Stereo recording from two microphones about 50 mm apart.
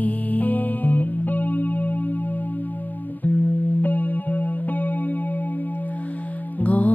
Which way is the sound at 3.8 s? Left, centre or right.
Left.